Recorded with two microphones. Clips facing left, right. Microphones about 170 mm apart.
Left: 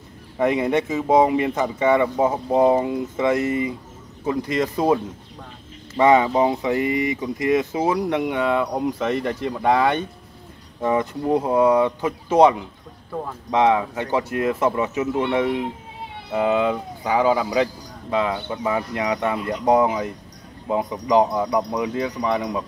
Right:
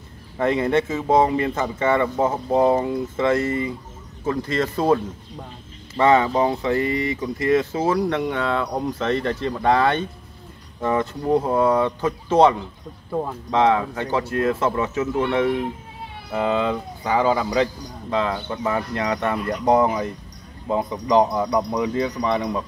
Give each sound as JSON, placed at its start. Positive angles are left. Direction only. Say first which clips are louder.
{"t": 0.4, "sound": "speech", "louder": "even", "side_deg": 15}